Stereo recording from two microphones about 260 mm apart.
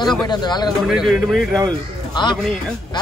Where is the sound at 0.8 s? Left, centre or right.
Centre.